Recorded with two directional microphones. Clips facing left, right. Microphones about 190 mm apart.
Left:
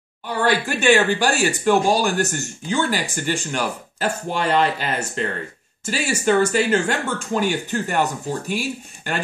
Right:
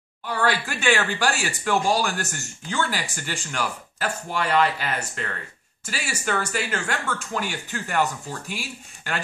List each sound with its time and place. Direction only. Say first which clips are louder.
0.3 s speech: left 4 dB; 20° left (ahead or behind)